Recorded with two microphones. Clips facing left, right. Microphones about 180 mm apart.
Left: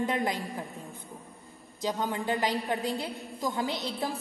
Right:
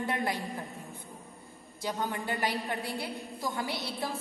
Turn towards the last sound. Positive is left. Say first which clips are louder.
# left 2 dB
turn(degrees=20)  # may be behind; listen again after turning